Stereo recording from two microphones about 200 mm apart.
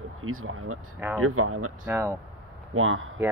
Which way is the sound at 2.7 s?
85° right.